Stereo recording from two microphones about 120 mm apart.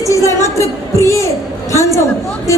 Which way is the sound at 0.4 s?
25° left (ahead or behind).